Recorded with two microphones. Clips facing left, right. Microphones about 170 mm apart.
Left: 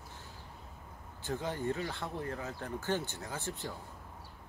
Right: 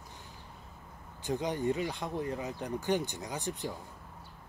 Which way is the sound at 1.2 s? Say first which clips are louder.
Right 4 dB; 15° right (ahead or behind).